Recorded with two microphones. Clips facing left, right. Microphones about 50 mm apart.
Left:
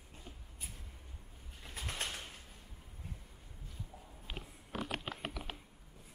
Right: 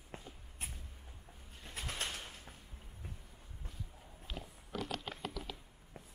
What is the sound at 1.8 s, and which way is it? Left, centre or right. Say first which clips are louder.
Bird: even; centre.